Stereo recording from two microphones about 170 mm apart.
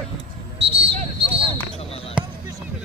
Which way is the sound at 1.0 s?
35° right (ahead or behind).